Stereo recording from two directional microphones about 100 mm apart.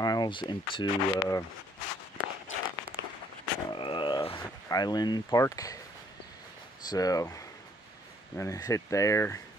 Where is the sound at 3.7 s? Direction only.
55° left (ahead or behind).